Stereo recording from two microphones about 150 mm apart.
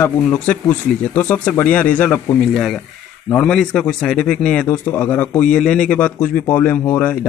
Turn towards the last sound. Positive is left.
turn(degrees=10)  # may be behind; listen again after turning